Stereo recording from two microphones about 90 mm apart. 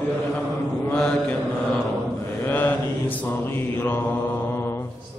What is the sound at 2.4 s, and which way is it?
Mantra, 20° left (ahead or behind).